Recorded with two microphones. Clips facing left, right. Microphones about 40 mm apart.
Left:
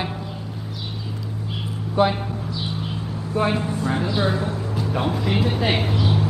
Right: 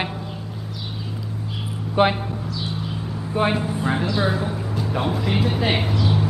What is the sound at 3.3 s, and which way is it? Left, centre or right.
Speech, right.